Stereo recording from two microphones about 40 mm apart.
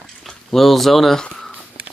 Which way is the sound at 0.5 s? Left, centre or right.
Centre.